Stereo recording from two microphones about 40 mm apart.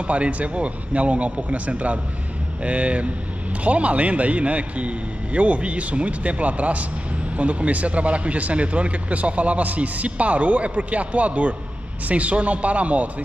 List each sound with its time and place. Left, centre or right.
0.0 s speech: right